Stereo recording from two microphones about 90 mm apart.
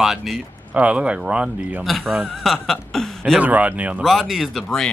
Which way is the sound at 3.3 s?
15° right (ahead or behind).